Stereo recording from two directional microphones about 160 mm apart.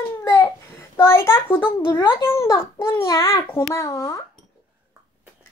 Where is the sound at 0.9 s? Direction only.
15° left (ahead or behind).